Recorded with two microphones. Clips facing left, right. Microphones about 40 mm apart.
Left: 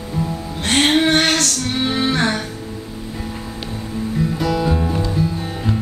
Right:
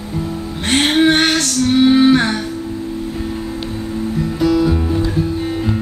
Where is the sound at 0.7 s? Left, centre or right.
Right.